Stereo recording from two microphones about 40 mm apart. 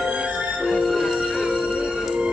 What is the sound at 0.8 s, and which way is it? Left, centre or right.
Music, centre.